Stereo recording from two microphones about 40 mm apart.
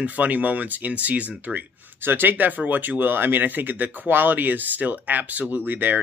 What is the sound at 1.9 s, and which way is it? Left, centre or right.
Speech, right.